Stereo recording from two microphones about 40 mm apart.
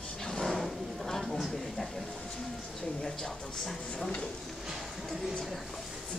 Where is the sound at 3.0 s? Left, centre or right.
Left.